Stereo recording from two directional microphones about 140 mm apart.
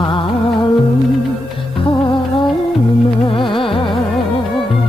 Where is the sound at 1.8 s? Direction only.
30° left (ahead or behind).